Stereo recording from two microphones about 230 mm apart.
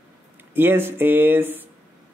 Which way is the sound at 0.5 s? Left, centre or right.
Centre.